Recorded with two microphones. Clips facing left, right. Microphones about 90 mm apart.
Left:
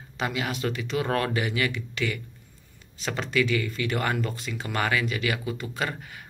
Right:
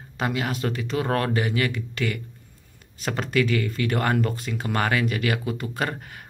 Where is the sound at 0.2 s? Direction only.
40° right (ahead or behind).